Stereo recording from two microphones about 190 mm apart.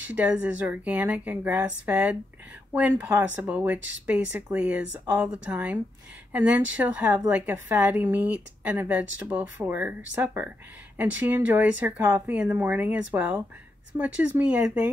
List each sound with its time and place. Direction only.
0.1 s speech: 10° right (ahead or behind)